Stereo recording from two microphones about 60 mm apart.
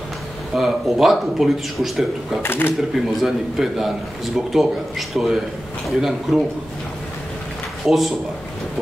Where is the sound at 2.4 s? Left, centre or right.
Left.